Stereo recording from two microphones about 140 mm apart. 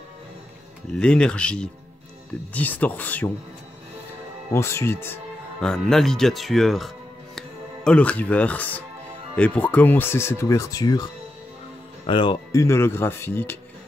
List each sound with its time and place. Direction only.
0.9 s speech: 5° left (ahead or behind)
4.5 s speech: 20° left (ahead or behind)
5.6 s speech: 5° left (ahead or behind); by 11.1 s 30° left (ahead or behind)
12.1 s speech: 35° left (ahead or behind)
12.5 s speech: 20° left (ahead or behind)